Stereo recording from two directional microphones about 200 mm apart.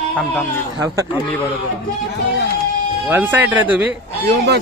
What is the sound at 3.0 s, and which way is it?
Speech, 10° right (ahead or behind).